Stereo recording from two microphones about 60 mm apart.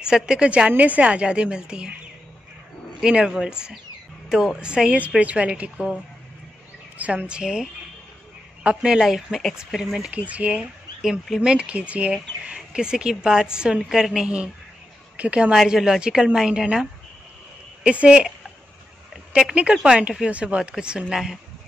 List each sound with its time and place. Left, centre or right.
0.0 s speech: centre
3.0 s a woman's voice: centre
7.0 s speech: right
8.6 s speech: centre
10.1 s a woman's voice: right
10.6 s speech: centre
11.4 s a woman's voice: centre
15.5 s speech: centre
17.8 s speech: centre
19.5 s speech: centre